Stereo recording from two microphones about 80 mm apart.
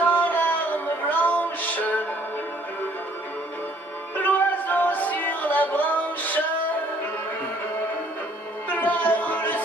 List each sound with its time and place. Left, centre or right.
0.0 s music: left
4.2 s music: left
8.6 s music: left